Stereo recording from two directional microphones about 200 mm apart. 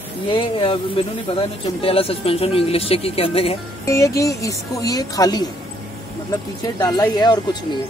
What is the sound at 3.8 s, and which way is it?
Speech, 15° left (ahead or behind).